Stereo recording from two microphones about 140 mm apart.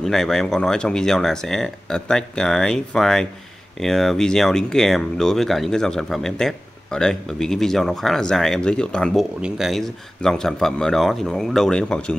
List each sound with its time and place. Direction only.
0.0 s speech: centre (ahead or behind)